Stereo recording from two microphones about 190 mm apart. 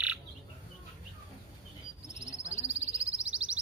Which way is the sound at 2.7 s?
5° right (ahead or behind).